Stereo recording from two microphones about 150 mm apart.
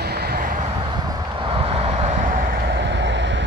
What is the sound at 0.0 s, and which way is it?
Vehicle, 90° right.